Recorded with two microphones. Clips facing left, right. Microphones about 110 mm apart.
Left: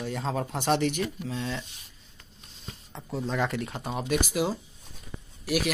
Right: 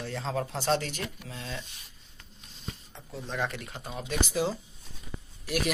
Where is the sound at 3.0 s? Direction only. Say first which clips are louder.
Left 5 dB; 90° left.